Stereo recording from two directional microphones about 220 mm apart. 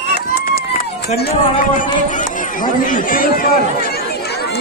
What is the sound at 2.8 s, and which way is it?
Speech, 40° left (ahead or behind).